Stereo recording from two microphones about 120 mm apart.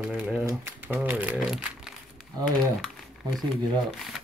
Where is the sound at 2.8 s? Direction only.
Centre (ahead or behind).